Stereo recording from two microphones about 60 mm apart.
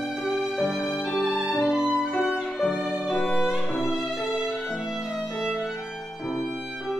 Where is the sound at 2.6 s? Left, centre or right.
Left.